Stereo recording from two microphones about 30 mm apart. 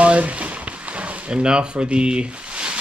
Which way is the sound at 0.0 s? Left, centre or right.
Right.